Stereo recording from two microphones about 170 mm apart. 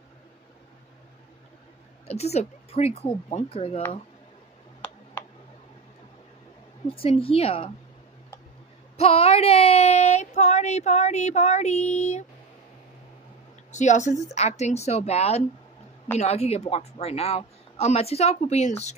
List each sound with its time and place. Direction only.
2.0 s a woman's voice: 40° left (ahead or behind)
6.9 s a woman's voice: 35° left (ahead or behind)
8.9 s speech: 35° left (ahead or behind)
13.7 s a woman's voice: 45° left (ahead or behind)